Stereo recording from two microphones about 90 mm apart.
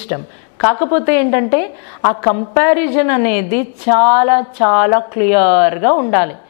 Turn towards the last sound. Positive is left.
turn(degrees=20)  # may be behind; listen again after turning